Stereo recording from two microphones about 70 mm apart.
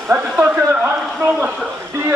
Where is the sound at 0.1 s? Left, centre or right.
Right.